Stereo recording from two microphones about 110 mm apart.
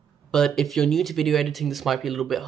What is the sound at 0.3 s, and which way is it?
Speech, 5° left (ahead or behind).